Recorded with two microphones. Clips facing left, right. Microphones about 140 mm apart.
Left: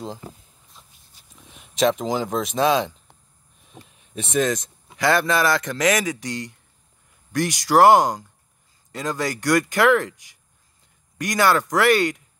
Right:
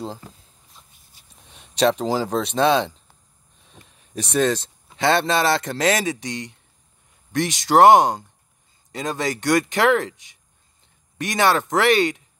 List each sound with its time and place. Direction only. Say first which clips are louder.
0.0 s speech: right 1 dB; 35° right (ahead or behind)
1.5 s speech: right 1 dB; 35° right (ahead or behind)
3.9 s speech: even; 40° right (ahead or behind); by 12.2 s 20° right (ahead or behind)